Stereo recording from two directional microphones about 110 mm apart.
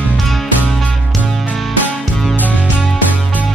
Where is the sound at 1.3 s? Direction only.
5° left (ahead or behind).